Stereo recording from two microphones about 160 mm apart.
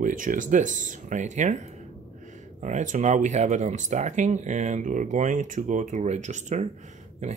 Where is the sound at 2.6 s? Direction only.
50° right (ahead or behind).